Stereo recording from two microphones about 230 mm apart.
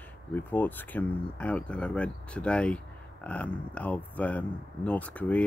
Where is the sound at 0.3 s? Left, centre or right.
Centre.